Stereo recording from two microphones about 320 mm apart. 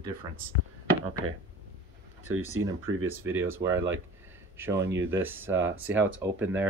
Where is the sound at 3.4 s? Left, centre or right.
Centre.